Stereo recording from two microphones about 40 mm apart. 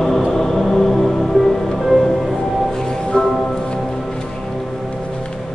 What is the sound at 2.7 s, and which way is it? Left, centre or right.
Music, centre.